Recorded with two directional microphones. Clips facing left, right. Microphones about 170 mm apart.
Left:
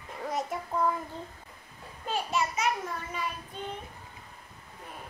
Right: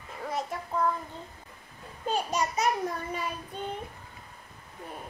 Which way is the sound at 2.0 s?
40° right (ahead or behind).